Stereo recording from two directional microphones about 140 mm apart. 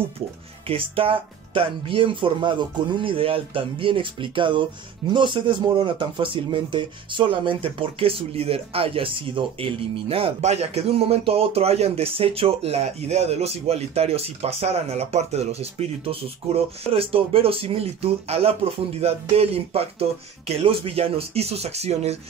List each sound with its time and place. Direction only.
0.7 s speech: 40° right (ahead or behind)